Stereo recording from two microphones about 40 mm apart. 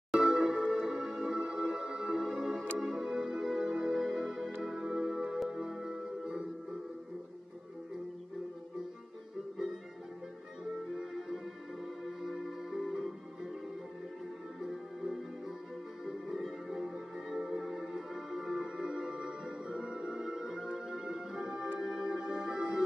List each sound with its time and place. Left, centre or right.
0.1 s music: centre
4.6 s music: centre
10.6 s music: centre
14.6 s music: centre